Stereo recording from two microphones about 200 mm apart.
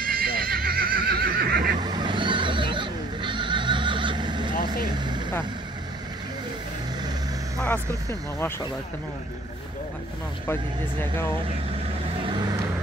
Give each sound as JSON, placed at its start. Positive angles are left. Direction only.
{"t": 0.0, "sound": "neigh", "side_deg": -50}
{"t": 1.8, "sound": "neigh", "side_deg": -20}
{"t": 4.9, "sound": "vehicle", "side_deg": -20}
{"t": 7.5, "sound": "vehicle", "side_deg": 10}
{"t": 10.4, "sound": "speech", "side_deg": 10}